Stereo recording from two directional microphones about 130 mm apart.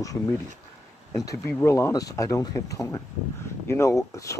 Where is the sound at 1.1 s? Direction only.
25° left (ahead or behind).